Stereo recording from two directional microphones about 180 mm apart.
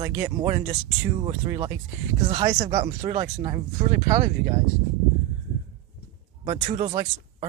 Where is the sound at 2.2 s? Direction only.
35° right (ahead or behind).